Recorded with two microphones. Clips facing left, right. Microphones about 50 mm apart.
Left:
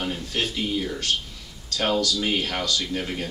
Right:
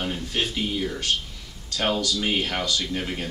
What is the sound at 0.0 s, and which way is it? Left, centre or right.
Speech, centre.